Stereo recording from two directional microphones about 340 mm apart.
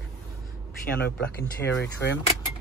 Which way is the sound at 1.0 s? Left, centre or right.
Left.